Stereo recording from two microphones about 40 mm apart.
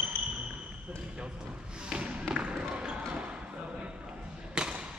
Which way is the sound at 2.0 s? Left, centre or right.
Right.